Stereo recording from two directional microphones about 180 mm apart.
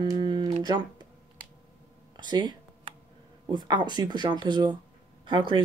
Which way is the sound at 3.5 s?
25° right (ahead or behind).